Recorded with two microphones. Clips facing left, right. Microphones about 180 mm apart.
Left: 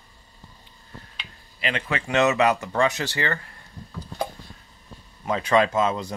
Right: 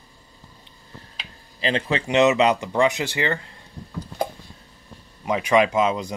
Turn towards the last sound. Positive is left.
turn(degrees=-15)  # may be behind; listen again after turning